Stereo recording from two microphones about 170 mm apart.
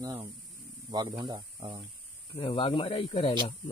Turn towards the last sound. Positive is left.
turn(degrees=35)  # may be behind; listen again after turning